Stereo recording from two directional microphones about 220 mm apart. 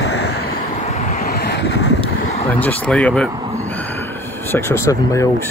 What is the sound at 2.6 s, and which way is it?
Speech, 5° left (ahead or behind).